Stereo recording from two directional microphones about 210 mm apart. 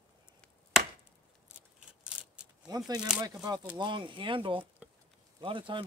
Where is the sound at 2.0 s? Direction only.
5° right (ahead or behind).